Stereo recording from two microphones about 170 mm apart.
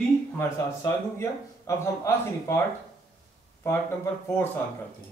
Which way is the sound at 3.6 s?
15° left (ahead or behind).